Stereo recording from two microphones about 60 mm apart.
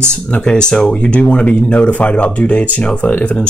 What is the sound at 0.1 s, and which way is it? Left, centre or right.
Speech, centre.